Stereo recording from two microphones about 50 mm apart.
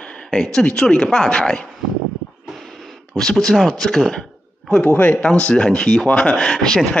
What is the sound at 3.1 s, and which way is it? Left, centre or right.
A man's voice, centre.